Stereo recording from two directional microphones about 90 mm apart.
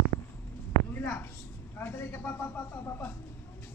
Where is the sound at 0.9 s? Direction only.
25° left (ahead or behind).